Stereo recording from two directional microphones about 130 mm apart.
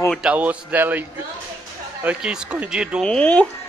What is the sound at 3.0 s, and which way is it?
Speech, 5° left (ahead or behind).